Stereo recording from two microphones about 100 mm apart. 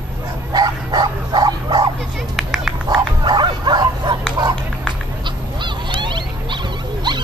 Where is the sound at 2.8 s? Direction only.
45° right (ahead or behind).